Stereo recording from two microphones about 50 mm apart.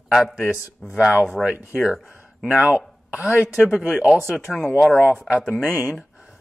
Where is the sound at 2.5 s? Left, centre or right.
Right.